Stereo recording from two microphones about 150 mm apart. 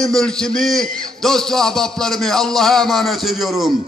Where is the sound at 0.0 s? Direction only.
5° left (ahead or behind).